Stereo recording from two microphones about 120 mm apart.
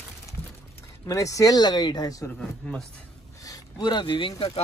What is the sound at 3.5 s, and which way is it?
Speech, 35° left (ahead or behind).